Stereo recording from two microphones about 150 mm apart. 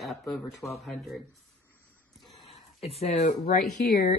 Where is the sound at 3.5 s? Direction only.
85° left.